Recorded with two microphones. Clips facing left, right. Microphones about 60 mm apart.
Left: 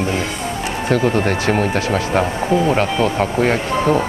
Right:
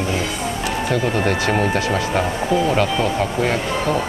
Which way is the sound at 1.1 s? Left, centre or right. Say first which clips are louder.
Left 2 dB; left.